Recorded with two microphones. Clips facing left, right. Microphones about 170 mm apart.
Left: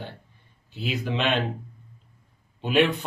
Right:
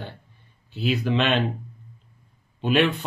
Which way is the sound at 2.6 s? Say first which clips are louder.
Right 1 dB; 15° left (ahead or behind).